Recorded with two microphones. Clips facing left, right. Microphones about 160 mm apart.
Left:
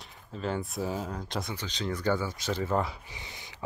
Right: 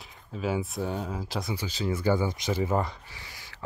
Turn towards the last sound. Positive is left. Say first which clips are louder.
# left 2 dB
turn(degrees=20)  # may be behind; listen again after turning